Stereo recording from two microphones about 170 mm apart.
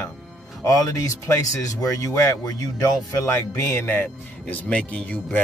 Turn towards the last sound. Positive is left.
turn(degrees=5)  # may be behind; listen again after turning